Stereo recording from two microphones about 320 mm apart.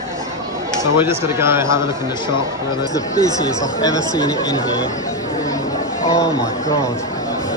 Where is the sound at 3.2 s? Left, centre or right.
Right.